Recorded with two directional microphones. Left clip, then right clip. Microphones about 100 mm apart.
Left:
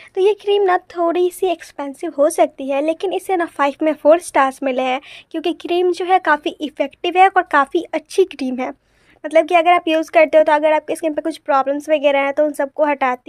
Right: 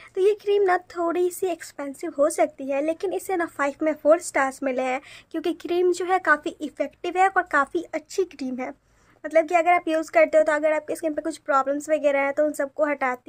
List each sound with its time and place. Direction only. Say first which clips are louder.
0.1 s speech: left 6 dB; 15° left (ahead or behind)
5.3 s speech: left 6 dB; 15° left (ahead or behind); by 13.2 s 30° left (ahead or behind)